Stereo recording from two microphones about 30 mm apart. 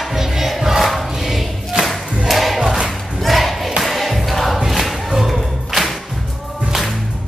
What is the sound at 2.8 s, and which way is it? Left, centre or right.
Battle cry, centre.